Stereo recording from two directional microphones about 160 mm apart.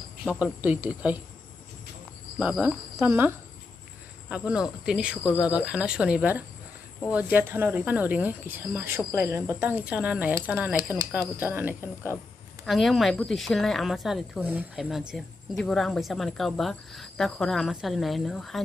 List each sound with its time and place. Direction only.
0.2 s speech: 5° right (ahead or behind)
2.3 s speech: 5° right (ahead or behind)
3.1 s speech: 15° right (ahead or behind)
12.6 s speech: centre (ahead or behind)